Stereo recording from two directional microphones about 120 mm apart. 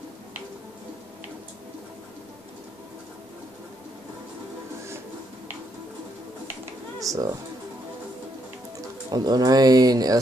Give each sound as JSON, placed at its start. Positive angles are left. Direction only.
{"t": 7.0, "sound": "speech", "side_deg": -30}
{"t": 9.1, "sound": "speech", "side_deg": -35}